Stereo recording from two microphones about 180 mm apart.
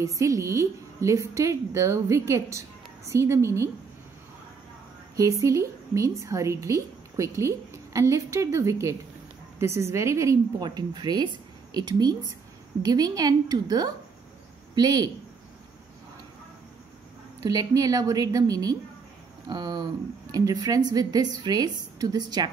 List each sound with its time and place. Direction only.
0.0 s a woman's voice: 20° right (ahead or behind)
5.1 s a woman's voice: 20° right (ahead or behind)
17.5 s a woman's voice: 20° right (ahead or behind)